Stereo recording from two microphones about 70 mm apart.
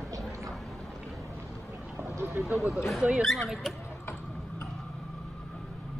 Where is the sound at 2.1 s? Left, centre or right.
Right.